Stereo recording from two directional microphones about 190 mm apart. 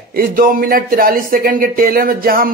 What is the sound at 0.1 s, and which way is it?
Speech, 50° right (ahead or behind).